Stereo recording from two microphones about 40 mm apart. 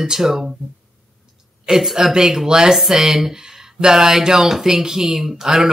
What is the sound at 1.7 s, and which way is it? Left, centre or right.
Speech, centre.